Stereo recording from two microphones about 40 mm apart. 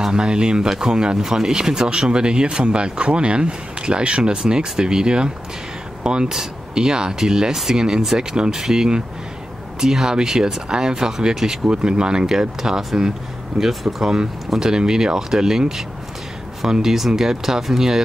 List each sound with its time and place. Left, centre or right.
0.0 s speech: centre
8.3 s speech: centre